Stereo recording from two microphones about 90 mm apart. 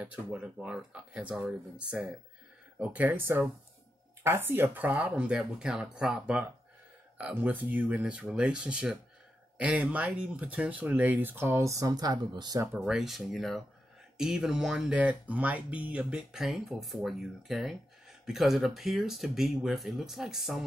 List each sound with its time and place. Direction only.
0.0 s speech: 10° right (ahead or behind); by 12.6 s 45° right (ahead or behind)
12.7 s speech: 5° right (ahead or behind)